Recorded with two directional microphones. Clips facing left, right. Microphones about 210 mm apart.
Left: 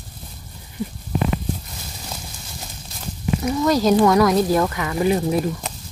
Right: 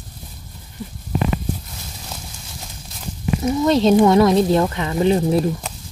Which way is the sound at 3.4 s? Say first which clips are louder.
Right 3 dB; 25° right (ahead or behind).